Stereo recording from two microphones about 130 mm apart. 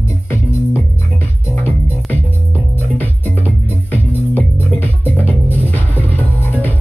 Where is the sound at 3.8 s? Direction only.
15° left (ahead or behind).